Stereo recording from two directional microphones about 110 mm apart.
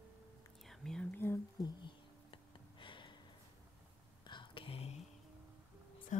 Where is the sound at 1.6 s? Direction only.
45° left (ahead or behind).